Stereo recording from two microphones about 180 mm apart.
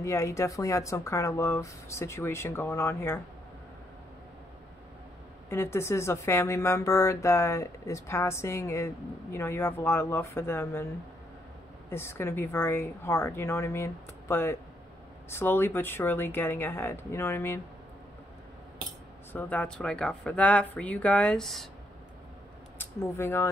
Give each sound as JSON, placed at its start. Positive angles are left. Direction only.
{"t": 0.0, "sound": "speech", "side_deg": 15}
{"t": 5.5, "sound": "speech", "side_deg": 15}
{"t": 11.9, "sound": "speech", "side_deg": 15}
{"t": 19.3, "sound": "speech", "side_deg": 10}
{"t": 22.8, "sound": "speech", "side_deg": 15}